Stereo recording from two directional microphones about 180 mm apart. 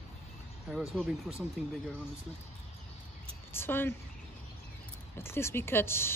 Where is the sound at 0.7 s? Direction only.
5° right (ahead or behind).